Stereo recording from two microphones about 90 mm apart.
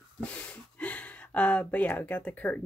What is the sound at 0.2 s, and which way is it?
Speech, 15° left (ahead or behind).